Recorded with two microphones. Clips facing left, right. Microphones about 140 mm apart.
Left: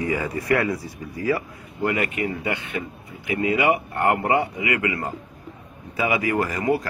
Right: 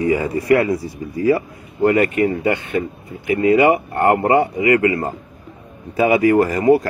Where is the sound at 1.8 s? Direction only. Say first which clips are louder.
Right 9 dB; 45° right (ahead or behind).